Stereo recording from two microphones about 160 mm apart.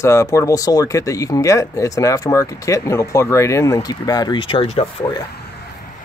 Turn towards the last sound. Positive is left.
turn(degrees=35)  # may be behind; listen again after turning